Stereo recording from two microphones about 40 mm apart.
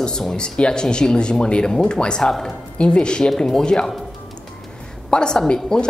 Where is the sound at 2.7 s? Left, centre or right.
Left.